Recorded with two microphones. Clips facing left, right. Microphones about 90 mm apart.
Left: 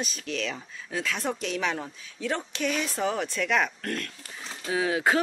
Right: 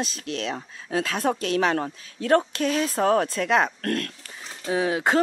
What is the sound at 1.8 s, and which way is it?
Speech, 60° right (ahead or behind).